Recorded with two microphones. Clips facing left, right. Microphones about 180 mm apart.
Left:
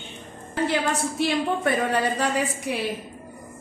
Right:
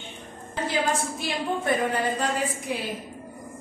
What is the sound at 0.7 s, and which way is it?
A woman's voice, 70° left (ahead or behind).